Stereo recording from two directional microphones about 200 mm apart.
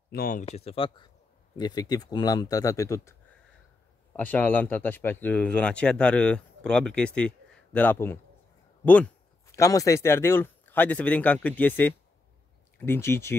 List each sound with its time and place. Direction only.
0.1 s speech: 45° left (ahead or behind); by 13.4 s 10° left (ahead or behind)